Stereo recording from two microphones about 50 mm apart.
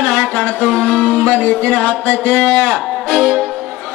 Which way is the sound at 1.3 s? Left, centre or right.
Left.